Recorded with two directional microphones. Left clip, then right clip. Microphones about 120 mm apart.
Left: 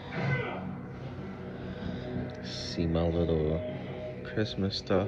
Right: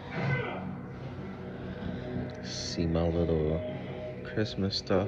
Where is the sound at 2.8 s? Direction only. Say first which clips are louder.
Even; 35° right (ahead or behind).